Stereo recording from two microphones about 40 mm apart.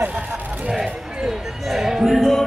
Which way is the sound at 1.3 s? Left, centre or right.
Centre.